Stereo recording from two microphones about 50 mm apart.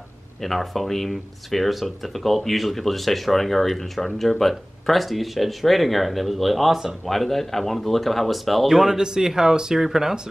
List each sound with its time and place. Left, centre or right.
0.4 s speech: centre
7.1 s speech: centre